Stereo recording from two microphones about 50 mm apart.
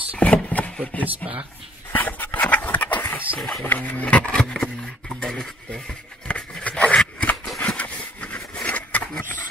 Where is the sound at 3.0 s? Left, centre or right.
Left.